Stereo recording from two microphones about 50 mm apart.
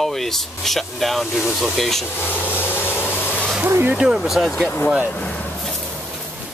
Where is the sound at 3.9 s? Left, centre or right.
Centre.